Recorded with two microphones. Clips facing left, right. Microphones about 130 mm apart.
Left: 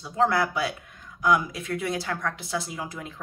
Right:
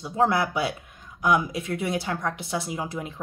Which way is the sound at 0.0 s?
20° right (ahead or behind).